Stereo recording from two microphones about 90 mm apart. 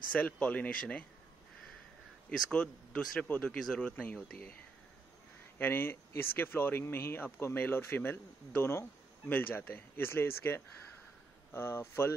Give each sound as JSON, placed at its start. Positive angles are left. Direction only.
{"t": 0.1, "sound": "speech", "side_deg": 10}
{"t": 2.2, "sound": "speech", "side_deg": 10}
{"t": 5.6, "sound": "speech", "side_deg": 25}